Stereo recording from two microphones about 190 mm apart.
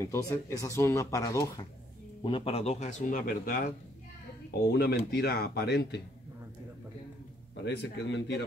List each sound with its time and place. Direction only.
0.0 s speech: 15° left (ahead or behind); by 5.9 s 60° left (ahead or behind)
7.6 s speech: 65° left (ahead or behind)